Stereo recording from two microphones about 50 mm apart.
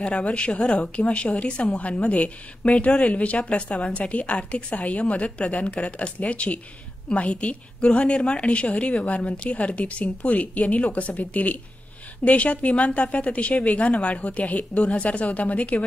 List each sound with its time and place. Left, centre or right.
0.0 s a woman's voice: left